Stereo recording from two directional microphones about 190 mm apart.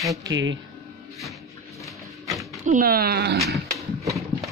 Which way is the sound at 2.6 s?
45° right (ahead or behind).